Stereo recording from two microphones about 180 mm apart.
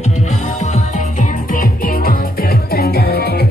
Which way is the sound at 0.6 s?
40° left (ahead or behind).